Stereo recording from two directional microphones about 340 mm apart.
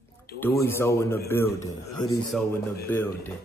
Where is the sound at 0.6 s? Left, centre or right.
Centre.